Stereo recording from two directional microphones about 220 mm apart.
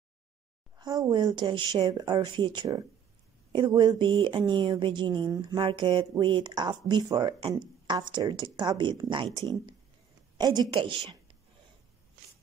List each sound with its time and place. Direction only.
0.7 s speech: 15° right (ahead or behind)
10.3 s speech: 20° right (ahead or behind)